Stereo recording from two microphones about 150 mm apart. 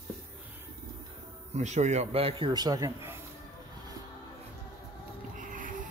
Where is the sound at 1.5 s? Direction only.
50° right (ahead or behind).